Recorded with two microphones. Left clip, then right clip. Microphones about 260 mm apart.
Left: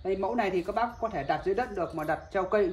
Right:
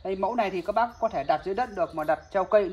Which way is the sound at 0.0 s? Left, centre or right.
Right.